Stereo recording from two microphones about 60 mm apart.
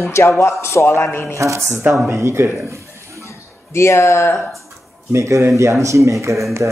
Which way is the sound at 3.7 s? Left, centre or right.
Left.